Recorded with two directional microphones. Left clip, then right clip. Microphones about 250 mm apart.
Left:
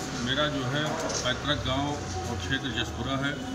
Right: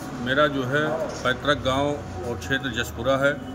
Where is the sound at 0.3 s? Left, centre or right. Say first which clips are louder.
Right 8 dB; centre.